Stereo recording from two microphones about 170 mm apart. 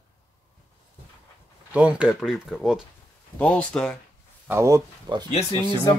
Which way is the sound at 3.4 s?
10° left (ahead or behind).